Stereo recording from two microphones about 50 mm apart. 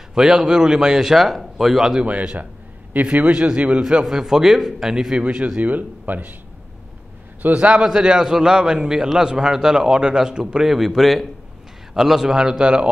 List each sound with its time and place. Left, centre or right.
0.1 s a man's voice: centre
2.0 s a man's voice: right
4.0 s a man's voice: centre
5.1 s a man's voice: right
7.4 s a man's voice: right
7.8 s a man's voice: centre